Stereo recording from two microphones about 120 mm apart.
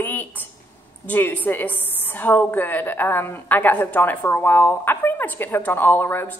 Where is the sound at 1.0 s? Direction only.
15° left (ahead or behind).